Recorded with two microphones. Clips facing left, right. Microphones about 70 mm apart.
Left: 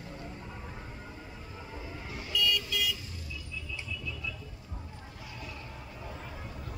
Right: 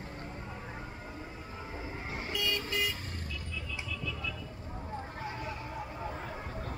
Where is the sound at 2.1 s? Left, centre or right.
Right.